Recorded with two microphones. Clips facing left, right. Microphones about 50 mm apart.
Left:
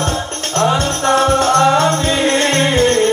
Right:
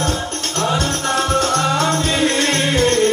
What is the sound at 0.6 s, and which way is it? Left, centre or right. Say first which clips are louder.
Music: left 5 dB; left.